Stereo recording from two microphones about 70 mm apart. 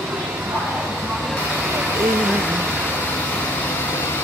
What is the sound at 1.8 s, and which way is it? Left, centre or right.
Vehicle, centre.